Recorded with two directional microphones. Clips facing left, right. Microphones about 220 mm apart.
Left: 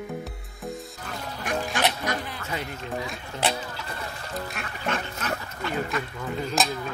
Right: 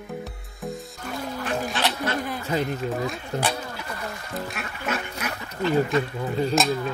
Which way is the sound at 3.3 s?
35° right (ahead or behind).